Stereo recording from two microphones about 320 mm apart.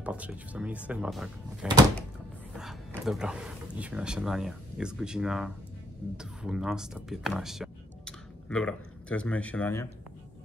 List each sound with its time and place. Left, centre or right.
0.0 s speech: centre